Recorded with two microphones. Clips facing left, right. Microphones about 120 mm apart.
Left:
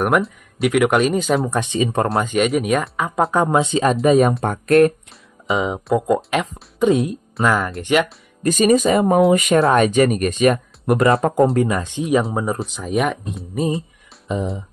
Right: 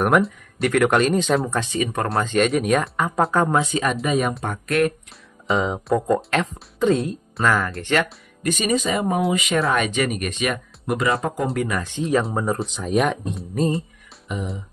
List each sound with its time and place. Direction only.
0.0 s speech: centre (ahead or behind)
1.5 s speech: 20° left (ahead or behind)
2.2 s speech: 5° left (ahead or behind)
3.3 s speech: 20° left (ahead or behind); by 4.3 s 35° left (ahead or behind)
5.5 s speech: 5° left (ahead or behind)
8.4 s speech: 40° left (ahead or behind)
9.6 s speech: 30° left (ahead or behind)
9.8 s speech: 45° left (ahead or behind)
11.3 s speech: 30° left (ahead or behind)
12.2 s speech: 5° left (ahead or behind)
14.2 s speech: 30° left (ahead or behind)